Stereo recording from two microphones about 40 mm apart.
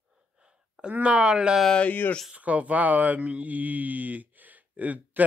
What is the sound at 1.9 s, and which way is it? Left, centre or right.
Speech, left.